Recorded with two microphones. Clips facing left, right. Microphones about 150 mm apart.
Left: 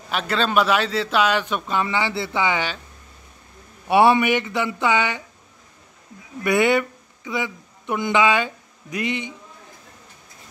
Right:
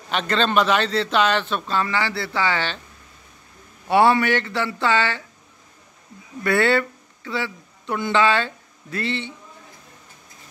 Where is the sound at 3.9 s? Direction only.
20° left (ahead or behind).